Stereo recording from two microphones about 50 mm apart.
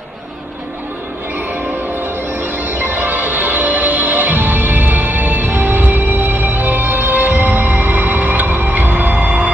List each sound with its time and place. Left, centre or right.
2.0 s tubular bells: right